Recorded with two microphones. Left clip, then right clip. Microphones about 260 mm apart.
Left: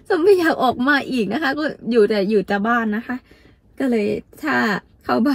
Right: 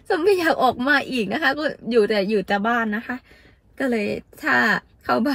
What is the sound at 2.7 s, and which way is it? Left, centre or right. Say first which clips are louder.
Speech: left 2 dB; centre.